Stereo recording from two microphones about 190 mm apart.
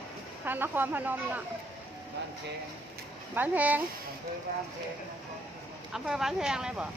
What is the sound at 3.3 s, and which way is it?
Speech, 10° right (ahead or behind).